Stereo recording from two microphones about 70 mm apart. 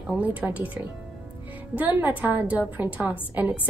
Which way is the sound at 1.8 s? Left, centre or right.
Right.